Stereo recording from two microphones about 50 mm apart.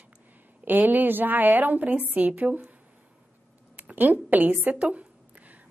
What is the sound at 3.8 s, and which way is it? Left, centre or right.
Speech, right.